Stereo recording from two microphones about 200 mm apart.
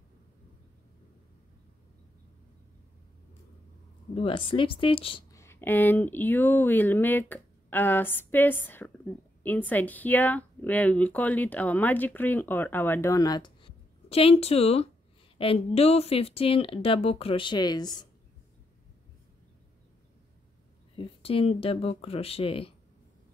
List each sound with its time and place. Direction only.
4.1 s speech: 25° left (ahead or behind)
5.3 s speech: 15° left (ahead or behind)
20.9 s speech: 25° left (ahead or behind)